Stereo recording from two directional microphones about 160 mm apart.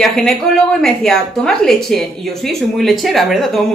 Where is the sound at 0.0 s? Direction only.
5° left (ahead or behind).